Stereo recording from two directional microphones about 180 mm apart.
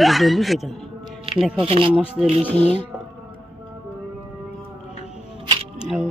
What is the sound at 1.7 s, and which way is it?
Speech, 30° right (ahead or behind).